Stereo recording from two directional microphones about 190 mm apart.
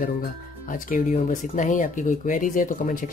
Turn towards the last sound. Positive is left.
turn(degrees=45)  # may be behind; listen again after turning